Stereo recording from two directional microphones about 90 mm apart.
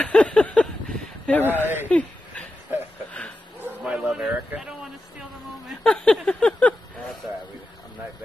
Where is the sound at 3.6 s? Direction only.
10° right (ahead or behind).